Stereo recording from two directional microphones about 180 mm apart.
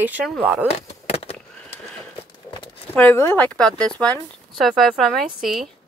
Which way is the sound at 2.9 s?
10° left (ahead or behind).